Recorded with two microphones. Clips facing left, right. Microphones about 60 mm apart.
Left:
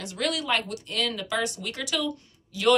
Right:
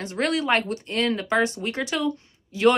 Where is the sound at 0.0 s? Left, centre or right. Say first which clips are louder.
Right 5 dB; right.